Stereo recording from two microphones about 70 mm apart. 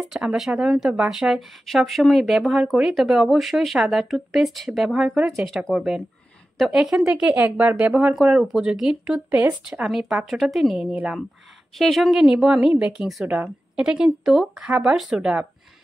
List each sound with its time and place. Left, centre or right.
0.1 s speech: centre
7.2 s speech: centre
7.9 s speech: centre